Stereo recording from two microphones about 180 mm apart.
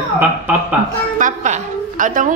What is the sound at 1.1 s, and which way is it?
A woman's voice, 45° right (ahead or behind).